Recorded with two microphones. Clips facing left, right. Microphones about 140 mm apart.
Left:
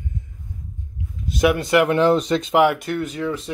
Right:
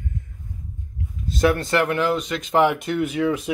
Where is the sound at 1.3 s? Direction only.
15° left (ahead or behind).